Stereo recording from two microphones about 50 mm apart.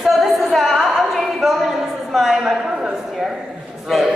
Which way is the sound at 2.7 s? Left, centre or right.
Centre.